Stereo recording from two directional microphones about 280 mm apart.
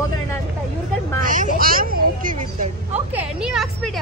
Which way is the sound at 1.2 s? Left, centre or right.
Right.